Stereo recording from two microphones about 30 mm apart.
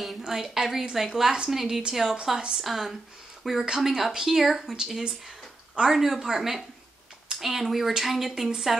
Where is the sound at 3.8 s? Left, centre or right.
Centre.